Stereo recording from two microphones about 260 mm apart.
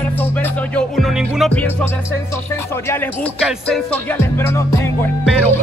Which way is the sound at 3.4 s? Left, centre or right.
Centre.